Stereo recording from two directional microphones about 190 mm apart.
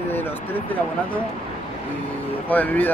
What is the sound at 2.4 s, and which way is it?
Speech, 10° left (ahead or behind).